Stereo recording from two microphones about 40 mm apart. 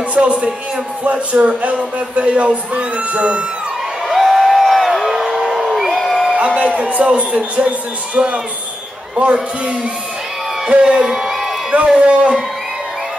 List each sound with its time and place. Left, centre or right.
0.1 s a man's voice: right
4.1 s a sound: centre
5.8 s crowd: centre
6.3 s a man's voice: right
11.1 s a sound: centre
11.7 s a man's voice: right